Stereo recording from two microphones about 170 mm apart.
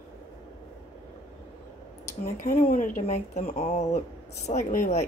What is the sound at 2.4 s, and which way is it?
Speech, 50° left (ahead or behind).